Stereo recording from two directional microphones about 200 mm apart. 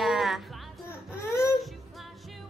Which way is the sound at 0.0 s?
Centre (ahead or behind).